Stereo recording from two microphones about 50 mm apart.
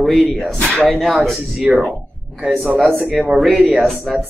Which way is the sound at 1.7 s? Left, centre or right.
Right.